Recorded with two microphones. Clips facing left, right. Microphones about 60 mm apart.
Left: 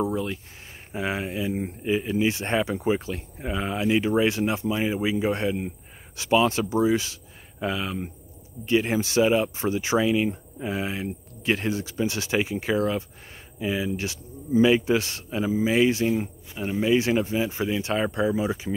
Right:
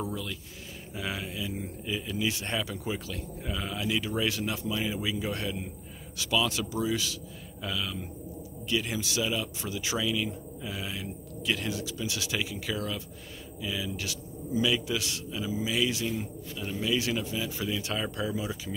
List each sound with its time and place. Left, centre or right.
0.0 s a man's voice: left